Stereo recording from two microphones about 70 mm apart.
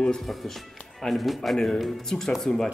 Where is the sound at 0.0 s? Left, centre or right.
Centre.